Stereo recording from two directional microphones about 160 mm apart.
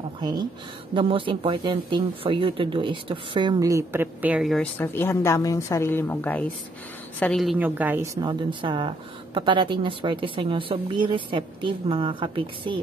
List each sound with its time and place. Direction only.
0.2 s speech: 25° right (ahead or behind); by 4.6 s 5° right (ahead or behind)
4.6 s a woman's voice: 15° left (ahead or behind)
7.5 s a woman's voice: 10° right (ahead or behind)
8.3 s speech: 30° right (ahead or behind)